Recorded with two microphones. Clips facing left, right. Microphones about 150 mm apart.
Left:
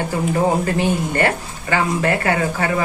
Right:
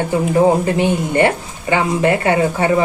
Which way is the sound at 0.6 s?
20° right (ahead or behind).